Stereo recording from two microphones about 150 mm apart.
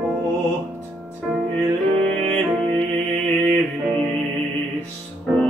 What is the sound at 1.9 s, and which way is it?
Music, 35° right (ahead or behind).